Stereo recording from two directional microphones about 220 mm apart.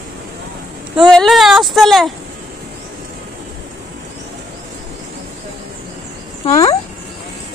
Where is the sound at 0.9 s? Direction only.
Centre (ahead or behind).